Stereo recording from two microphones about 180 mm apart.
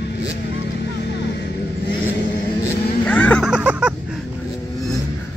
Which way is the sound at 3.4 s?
5° right (ahead or behind).